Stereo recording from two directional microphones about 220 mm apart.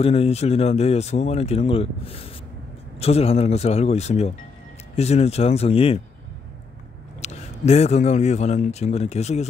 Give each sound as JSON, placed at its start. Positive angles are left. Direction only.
{"t": 0.0, "sound": "speech", "side_deg": 25}
{"t": 7.2, "sound": "speech", "side_deg": 30}